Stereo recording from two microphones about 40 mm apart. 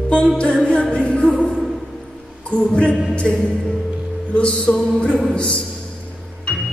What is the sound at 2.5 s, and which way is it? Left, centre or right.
Music, left.